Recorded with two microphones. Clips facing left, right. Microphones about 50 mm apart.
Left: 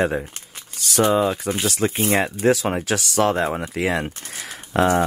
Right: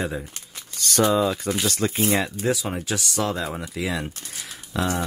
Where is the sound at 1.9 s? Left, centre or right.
Left.